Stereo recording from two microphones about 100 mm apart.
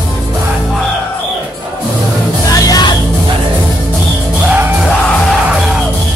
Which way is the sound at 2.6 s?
40° left (ahead or behind).